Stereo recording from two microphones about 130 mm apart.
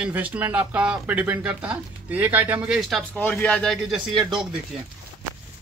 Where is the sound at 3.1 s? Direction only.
10° left (ahead or behind); by 4.6 s 5° right (ahead or behind).